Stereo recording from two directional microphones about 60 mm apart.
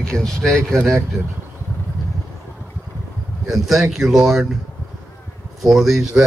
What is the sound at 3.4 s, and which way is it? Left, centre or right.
Speech, centre.